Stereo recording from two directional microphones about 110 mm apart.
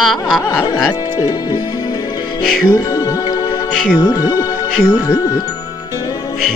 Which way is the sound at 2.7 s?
35° left (ahead or behind).